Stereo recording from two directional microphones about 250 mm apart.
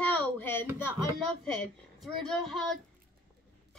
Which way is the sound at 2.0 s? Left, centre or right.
Centre.